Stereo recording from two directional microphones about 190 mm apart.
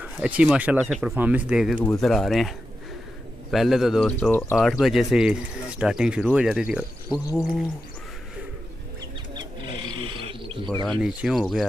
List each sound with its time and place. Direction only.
0.0 s speech: 5° right (ahead or behind)
3.5 s speech: centre (ahead or behind)
4.6 s speech: centre (ahead or behind)
7.1 s speech: 20° left (ahead or behind)
9.7 s wild animals: 25° right (ahead or behind)
11.0 s speech: 5° right (ahead or behind)